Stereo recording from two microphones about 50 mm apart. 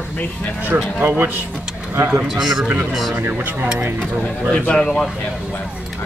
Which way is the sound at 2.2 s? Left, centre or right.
Centre.